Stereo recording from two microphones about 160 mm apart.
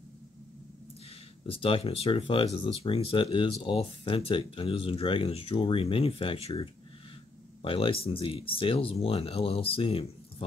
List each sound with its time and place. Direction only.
1.5 s speech: 35° left (ahead or behind)